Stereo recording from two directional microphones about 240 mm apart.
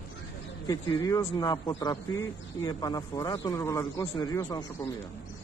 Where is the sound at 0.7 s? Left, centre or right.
Centre.